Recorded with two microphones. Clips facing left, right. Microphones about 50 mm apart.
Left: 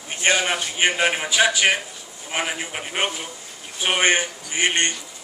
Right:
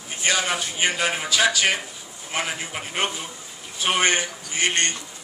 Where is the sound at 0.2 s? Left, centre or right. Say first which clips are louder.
Left 3 dB; left.